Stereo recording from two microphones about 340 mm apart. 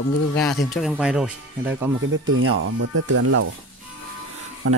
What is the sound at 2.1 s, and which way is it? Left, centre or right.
Speech, right.